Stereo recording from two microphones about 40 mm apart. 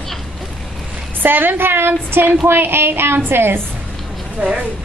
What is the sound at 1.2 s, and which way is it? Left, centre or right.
A woman's voice, right.